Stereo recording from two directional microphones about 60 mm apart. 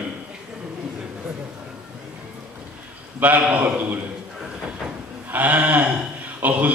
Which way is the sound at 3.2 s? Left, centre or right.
Right.